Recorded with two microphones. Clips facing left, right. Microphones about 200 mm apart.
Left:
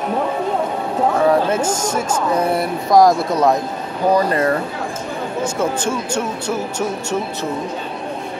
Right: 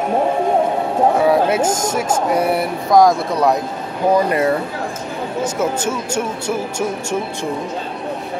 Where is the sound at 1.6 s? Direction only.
40° right (ahead or behind).